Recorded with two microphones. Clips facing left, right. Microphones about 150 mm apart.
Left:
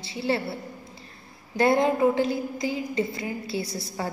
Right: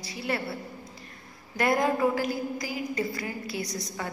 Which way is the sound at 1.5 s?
25° left (ahead or behind).